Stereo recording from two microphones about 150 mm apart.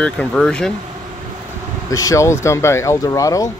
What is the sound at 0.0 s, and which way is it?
Speech, 5° left (ahead or behind).